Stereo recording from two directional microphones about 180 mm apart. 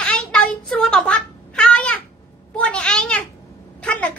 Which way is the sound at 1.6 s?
5° left (ahead or behind).